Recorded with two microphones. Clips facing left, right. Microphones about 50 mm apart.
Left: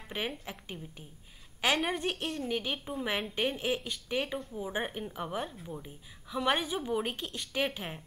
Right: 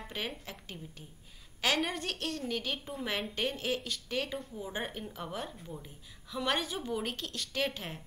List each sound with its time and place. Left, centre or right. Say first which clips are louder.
0.2 s a woman's voice: left 3 dB; left
5.5 s speech: left 2 dB; centre
6.2 s a woman's voice: left 3 dB; centre